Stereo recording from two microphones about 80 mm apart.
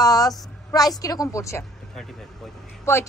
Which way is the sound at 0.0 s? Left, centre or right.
Left.